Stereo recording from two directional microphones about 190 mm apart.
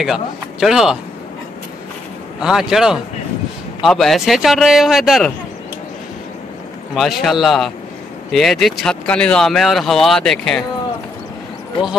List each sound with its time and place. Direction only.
0.0 s speech: 5° right (ahead or behind)
2.4 s speech: centre (ahead or behind)
7.0 s speech: centre (ahead or behind)